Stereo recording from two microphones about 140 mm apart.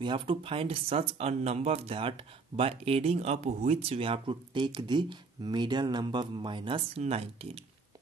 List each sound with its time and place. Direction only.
0.0 s speech: 35° right (ahead or behind)